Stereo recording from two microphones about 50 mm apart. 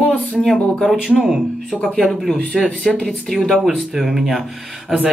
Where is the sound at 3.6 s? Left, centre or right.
Centre.